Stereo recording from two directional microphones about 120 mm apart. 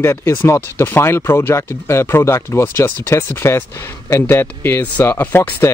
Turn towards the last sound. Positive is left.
turn(degrees=15)  # may be behind; listen again after turning